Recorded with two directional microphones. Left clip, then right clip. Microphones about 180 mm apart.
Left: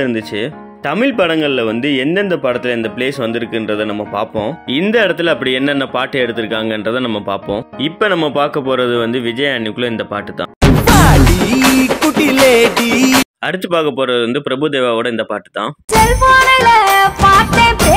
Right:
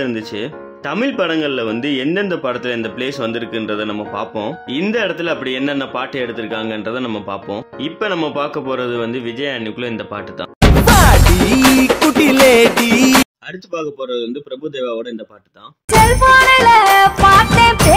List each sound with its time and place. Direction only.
0.0 s speech: 20° left (ahead or behind)
10.9 s music: centre (ahead or behind)
13.5 s speech: 25° left (ahead or behind)
16.0 s music: centre (ahead or behind)